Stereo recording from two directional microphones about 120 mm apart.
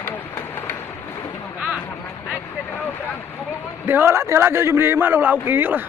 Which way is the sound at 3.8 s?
20° right (ahead or behind).